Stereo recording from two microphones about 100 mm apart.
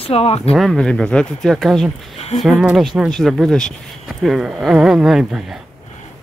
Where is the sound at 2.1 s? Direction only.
90° left.